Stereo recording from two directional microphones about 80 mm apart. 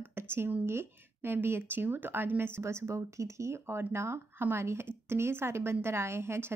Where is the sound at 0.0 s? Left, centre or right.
Right.